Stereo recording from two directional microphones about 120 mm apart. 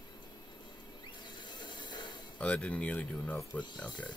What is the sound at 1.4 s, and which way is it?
Rub, 35° left (ahead or behind).